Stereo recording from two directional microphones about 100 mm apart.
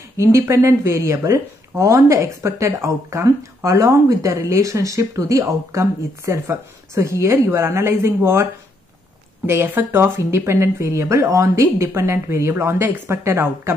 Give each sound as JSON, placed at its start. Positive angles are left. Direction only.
{"t": 0.2, "sound": "speech", "side_deg": -30}
{"t": 9.5, "sound": "speech", "side_deg": -20}